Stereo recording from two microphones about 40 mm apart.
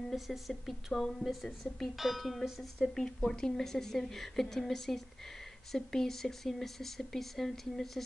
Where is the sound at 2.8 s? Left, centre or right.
Centre.